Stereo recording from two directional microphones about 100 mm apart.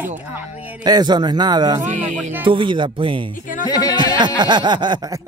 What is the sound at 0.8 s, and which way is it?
Speech, 45° right (ahead or behind).